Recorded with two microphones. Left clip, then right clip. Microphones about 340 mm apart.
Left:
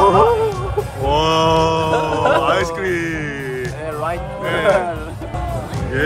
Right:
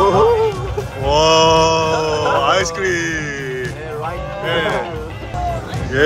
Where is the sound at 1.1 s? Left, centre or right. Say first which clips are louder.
Right 4 dB; centre.